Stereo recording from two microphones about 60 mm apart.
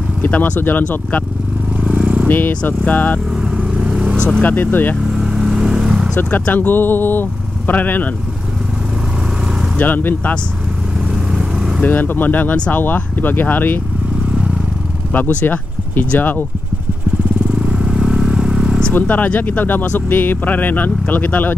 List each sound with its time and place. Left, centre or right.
0.2 s speech: left
1.9 s vehicle: centre
2.2 s speech: left
3.8 s vehicle: centre
4.4 s speech: left
5.1 s vehicle: centre
6.5 s speech: left
9.8 s speech: left
11.8 s speech: left
15.1 s speech: left
17.6 s vehicle: centre
18.9 s speech: left